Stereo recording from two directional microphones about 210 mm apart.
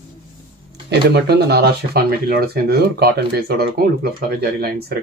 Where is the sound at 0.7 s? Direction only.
50° right (ahead or behind).